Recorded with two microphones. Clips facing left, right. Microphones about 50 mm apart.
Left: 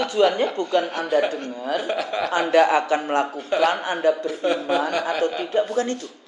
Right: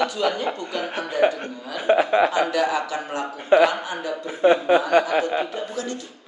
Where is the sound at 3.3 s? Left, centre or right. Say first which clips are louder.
Right 10 dB; right.